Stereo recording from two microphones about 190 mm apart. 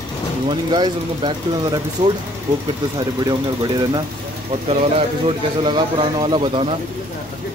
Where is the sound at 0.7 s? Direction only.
25° right (ahead or behind).